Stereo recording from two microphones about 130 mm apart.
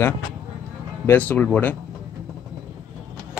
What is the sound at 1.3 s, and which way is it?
Speech, 10° left (ahead or behind).